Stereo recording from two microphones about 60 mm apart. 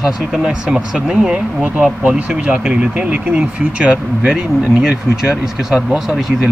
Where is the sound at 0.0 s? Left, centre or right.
Centre.